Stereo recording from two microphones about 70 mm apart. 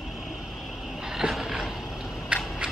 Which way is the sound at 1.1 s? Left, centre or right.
Centre.